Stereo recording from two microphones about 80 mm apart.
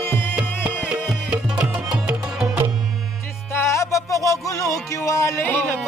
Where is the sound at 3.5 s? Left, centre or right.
Left.